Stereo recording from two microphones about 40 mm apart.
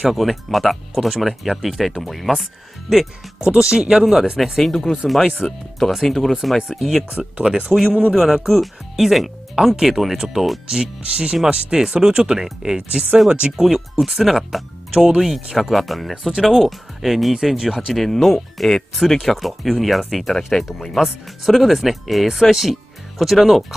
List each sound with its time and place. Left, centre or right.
0.1 s speech: centre
2.9 s speech: centre
4.0 s speech: centre
4.4 s speech: centre
7.1 s speech: right
8.1 s speech: centre
10.7 s speech: right
13.5 s speech: centre
18.0 s speech: centre